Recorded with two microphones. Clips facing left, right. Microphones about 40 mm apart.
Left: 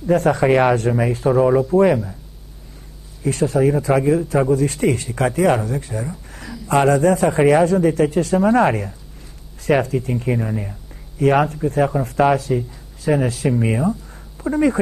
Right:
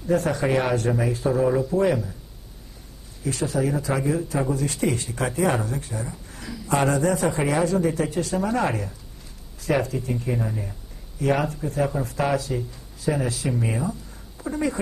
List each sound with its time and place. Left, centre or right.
0.1 s speech: left
1.5 s speech: left
3.3 s a man's voice: left
6.0 s a sound: left
6.7 s a man's voice: left
10.4 s speech: left
11.1 s a man's voice: left